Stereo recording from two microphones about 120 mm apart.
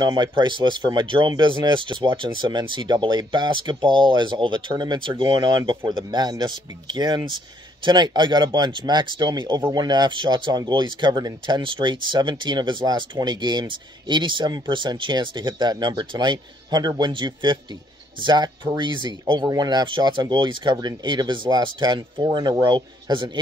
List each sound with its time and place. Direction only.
0.0 s speech: 40° right (ahead or behind)